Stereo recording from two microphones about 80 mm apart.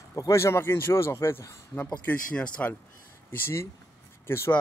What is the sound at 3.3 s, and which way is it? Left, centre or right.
Speech, left.